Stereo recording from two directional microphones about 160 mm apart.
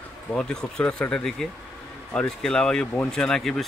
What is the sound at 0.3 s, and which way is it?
Speech, 5° left (ahead or behind).